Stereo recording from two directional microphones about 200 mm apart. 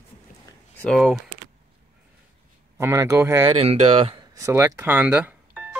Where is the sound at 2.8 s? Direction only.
15° right (ahead or behind).